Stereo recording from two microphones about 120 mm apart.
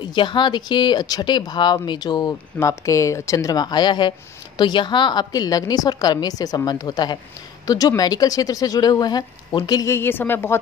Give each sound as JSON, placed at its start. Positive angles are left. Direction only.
{"t": 0.0, "sound": "speech", "side_deg": 40}
{"t": 9.9, "sound": "a woman's voice", "side_deg": 20}